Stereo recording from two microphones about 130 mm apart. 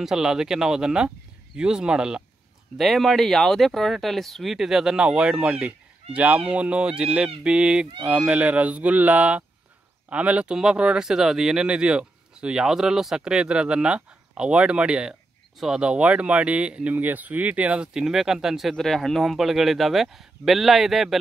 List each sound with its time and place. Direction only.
0.0 s speech: 5° right (ahead or behind)